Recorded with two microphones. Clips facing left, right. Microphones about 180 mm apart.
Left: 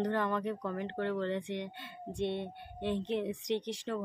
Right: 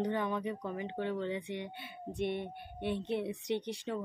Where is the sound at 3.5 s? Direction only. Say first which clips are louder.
Left 1 dB; 90° left.